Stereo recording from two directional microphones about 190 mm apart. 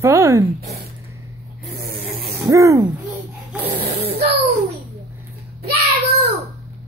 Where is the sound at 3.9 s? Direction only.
30° right (ahead or behind).